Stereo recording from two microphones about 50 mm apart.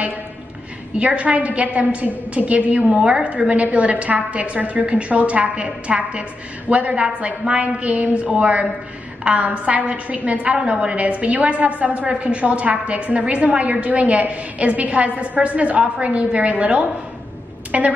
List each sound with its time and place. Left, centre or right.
0.9 s a woman's voice: right